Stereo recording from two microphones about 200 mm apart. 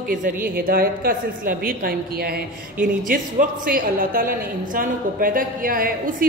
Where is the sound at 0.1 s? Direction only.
45° right (ahead or behind).